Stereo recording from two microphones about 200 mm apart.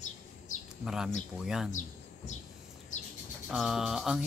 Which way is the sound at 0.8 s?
5° right (ahead or behind).